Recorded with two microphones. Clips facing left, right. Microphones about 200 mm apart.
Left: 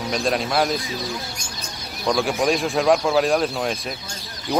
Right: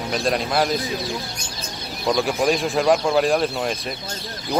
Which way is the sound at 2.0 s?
Centre (ahead or behind).